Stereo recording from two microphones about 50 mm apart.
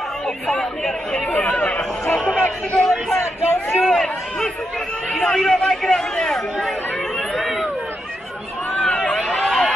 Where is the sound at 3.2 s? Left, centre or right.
Left.